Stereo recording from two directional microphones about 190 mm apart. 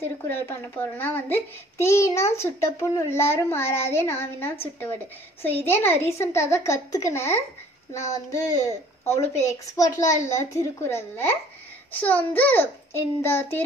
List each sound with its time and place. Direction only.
0.2 s a child's voice: 10° left (ahead or behind)